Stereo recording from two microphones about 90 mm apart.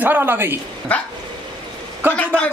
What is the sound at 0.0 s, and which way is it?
Speech, 25° right (ahead or behind).